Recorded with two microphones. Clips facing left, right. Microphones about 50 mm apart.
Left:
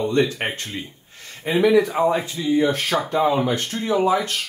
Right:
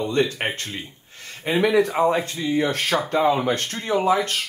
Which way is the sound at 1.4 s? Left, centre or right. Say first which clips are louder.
Left 2 dB; right.